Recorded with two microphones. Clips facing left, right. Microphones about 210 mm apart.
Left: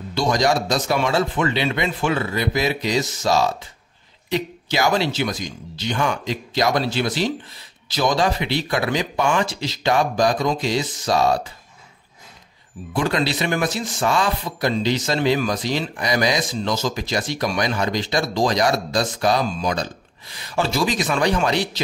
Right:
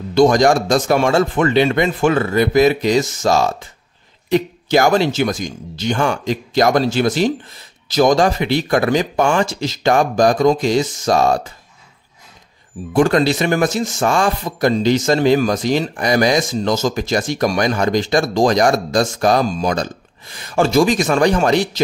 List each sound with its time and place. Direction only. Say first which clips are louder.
0.1 s speech: right 8 dB; 50° right (ahead or behind)
12.9 s speech: right 8 dB; 45° right (ahead or behind)